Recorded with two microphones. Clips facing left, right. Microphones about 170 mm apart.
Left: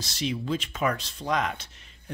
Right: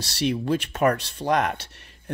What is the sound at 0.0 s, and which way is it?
Speech, 65° right (ahead or behind).